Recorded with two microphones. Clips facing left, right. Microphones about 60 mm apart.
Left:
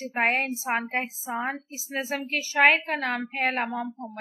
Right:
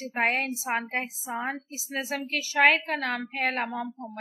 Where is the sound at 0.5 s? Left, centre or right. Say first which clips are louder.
Left 2 dB; left.